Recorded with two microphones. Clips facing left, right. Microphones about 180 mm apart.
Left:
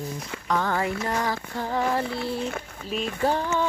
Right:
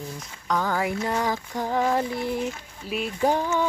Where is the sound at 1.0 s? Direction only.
15° right (ahead or behind).